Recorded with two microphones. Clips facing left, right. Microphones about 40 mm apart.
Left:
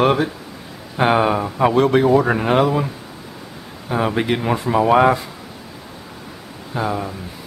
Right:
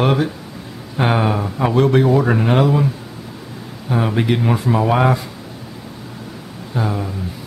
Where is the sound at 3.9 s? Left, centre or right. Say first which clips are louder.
Right 1 dB; centre.